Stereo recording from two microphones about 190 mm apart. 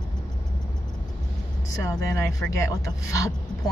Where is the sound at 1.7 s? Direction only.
15° left (ahead or behind).